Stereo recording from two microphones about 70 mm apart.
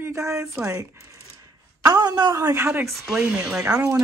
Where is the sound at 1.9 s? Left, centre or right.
Right.